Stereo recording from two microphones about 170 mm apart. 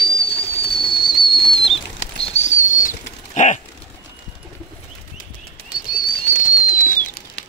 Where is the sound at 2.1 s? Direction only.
35° left (ahead or behind).